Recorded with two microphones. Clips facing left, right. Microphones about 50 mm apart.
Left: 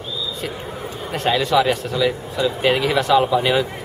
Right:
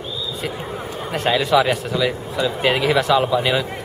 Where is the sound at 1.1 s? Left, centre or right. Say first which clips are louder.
Right 1 dB; centre.